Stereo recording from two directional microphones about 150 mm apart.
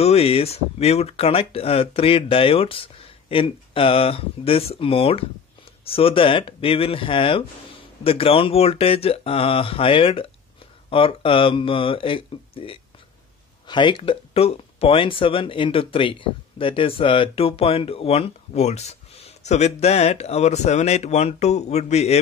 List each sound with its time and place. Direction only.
0.0 s speech: 40° left (ahead or behind)